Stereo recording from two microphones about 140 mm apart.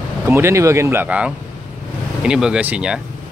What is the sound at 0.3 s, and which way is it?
Speech, 20° right (ahead or behind).